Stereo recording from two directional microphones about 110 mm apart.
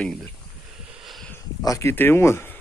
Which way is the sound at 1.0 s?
Centre (ahead or behind).